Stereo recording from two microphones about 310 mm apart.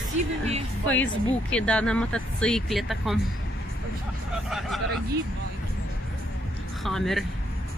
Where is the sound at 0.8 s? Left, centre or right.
Centre.